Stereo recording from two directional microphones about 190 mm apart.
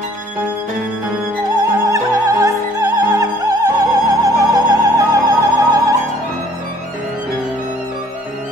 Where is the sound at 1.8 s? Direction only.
15° right (ahead or behind).